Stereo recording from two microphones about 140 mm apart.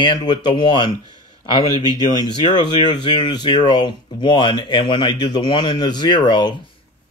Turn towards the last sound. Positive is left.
turn(degrees=30)  # may be behind; listen again after turning